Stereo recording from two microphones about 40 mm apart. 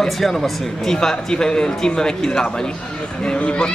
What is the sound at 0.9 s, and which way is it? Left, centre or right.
A man's voice, centre.